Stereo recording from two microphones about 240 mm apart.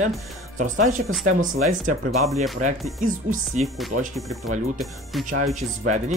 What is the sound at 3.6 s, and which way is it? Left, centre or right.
Speech, centre.